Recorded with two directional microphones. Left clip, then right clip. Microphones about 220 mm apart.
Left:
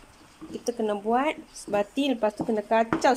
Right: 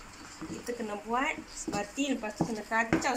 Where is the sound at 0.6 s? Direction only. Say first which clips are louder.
Left 9 dB; 55° left (ahead or behind).